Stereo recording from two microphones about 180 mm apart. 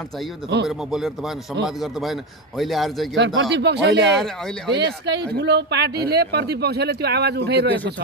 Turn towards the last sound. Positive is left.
turn(degrees=-65)  # may be behind; listen again after turning